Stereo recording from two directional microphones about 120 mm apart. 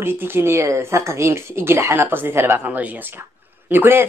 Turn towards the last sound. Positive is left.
turn(degrees=-20)  # may be behind; listen again after turning